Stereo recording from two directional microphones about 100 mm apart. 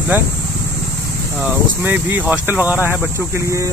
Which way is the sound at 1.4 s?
20° right (ahead or behind).